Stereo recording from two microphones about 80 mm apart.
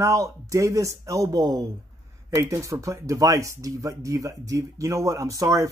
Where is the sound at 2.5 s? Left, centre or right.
Right.